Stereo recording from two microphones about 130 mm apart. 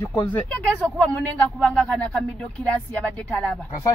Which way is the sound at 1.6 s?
5° left (ahead or behind).